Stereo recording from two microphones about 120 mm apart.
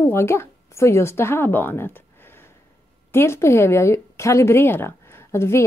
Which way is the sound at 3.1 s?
20° left (ahead or behind).